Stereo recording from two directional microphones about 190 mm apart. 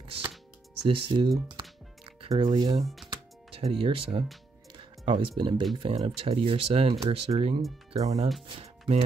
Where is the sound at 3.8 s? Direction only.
30° right (ahead or behind).